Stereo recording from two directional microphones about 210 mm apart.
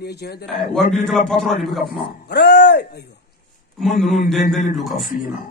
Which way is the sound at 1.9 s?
50° left (ahead or behind).